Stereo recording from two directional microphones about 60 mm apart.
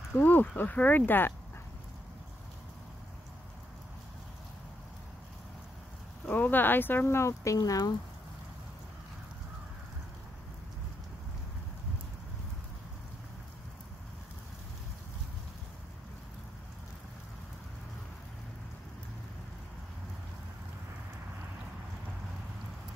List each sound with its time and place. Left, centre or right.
0.2 s speech: left
6.2 s speech: left
7.2 s speech: left